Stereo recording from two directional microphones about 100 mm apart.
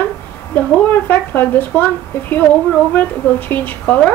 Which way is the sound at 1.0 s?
20° left (ahead or behind).